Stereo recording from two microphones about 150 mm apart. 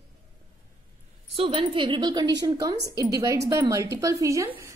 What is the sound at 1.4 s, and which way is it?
A woman's voice, 35° right (ahead or behind).